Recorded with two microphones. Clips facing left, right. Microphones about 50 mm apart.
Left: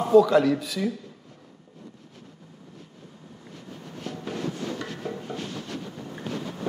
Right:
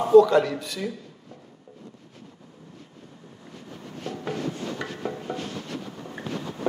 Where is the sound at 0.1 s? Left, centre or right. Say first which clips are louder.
Right 2 dB; centre.